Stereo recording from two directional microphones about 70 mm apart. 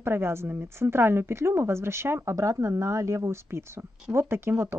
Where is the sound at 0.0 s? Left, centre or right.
Right.